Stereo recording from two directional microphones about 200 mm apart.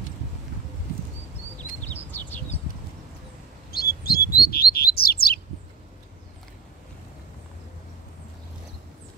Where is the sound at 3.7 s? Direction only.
50° left (ahead or behind).